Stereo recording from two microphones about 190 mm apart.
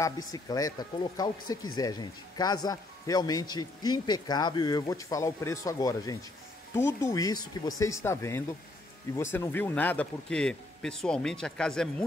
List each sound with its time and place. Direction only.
0.3 s a man's voice: 20° left (ahead or behind); by 11.9 s 5° left (ahead or behind)